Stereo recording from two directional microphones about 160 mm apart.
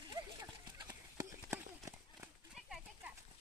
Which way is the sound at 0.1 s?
25° right (ahead or behind).